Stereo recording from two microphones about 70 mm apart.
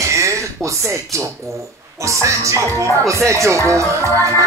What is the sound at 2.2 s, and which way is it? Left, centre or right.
Speech, right.